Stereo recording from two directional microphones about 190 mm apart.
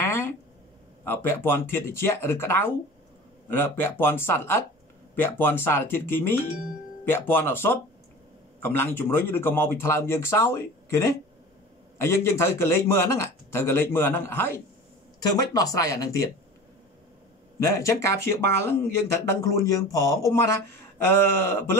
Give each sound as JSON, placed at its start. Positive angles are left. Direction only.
{"t": 0.0, "sound": "a sound", "side_deg": 10}
{"t": 1.0, "sound": "speech", "side_deg": 10}
{"t": 17.6, "sound": "speech", "side_deg": 15}